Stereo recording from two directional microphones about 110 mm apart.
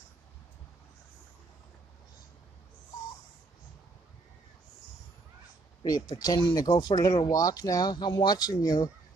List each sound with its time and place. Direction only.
5.8 s speech: 35° left (ahead or behind)